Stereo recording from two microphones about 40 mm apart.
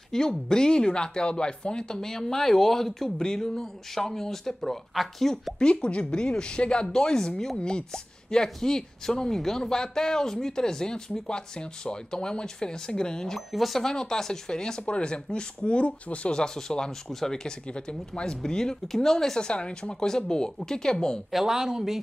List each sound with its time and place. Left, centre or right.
0.1 s speech: centre
4.9 s speech: centre
5.6 s a woman's voice: left
13.5 s speech: centre
13.8 s a woman's voice: centre; by 16.3 s left
16.3 s speech: centre
19.4 s a woman's voice: left
21.5 s speech: centre